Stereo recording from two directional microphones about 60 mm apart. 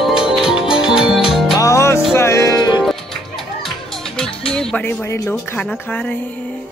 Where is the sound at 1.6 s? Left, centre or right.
Left.